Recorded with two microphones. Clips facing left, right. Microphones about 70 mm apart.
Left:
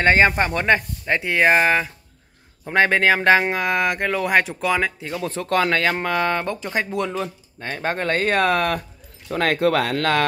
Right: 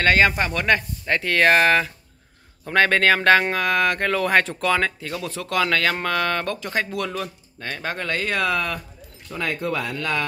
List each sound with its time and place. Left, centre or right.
0.0 s speech: left
1.0 s speech: centre
5.2 s speech: left
9.3 s speech: left